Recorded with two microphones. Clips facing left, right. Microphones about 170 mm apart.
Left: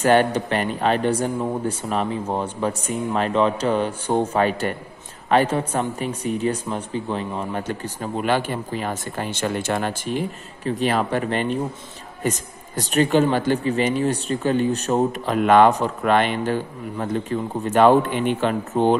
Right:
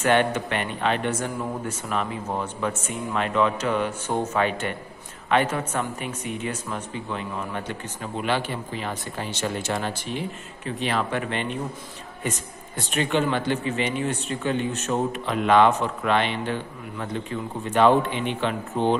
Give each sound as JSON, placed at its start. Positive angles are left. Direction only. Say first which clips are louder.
{"t": 0.0, "sound": "speech", "louder": "left 4 dB", "side_deg": 35}
{"t": 10.6, "sound": "speech", "louder": "left 5 dB", "side_deg": 40}